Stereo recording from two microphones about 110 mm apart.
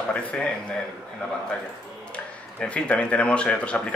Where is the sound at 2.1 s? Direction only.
10° left (ahead or behind).